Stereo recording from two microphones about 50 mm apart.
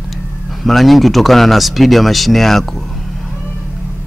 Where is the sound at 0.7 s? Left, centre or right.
Centre.